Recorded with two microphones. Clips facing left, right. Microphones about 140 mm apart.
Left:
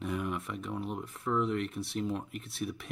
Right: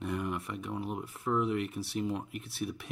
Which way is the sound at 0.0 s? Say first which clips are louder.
Even; centre (ahead or behind).